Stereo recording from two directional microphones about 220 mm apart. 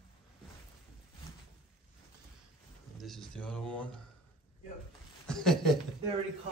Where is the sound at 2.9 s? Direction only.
Centre (ahead or behind).